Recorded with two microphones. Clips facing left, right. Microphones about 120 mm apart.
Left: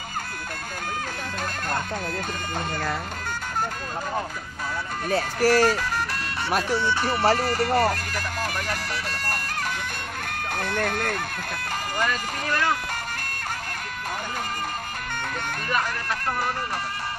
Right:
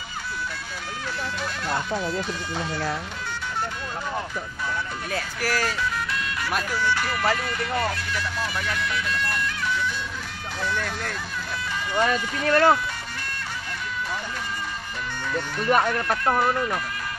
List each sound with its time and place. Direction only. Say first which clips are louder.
2.0 s speech: right 3 dB; 50° left (ahead or behind)
5.1 s speech: left 8 dB; 35° left (ahead or behind)
6.8 s speech: left 2 dB; 25° left (ahead or behind); by 11.2 s 55° left (ahead or behind)
11.7 s speech: right 4 dB; 45° left (ahead or behind)
12.4 s speech: right 7 dB; 45° right (ahead or behind)
15.7 s speech: right 7 dB; 45° right (ahead or behind)